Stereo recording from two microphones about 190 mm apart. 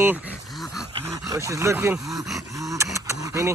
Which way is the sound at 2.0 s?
Centre (ahead or behind).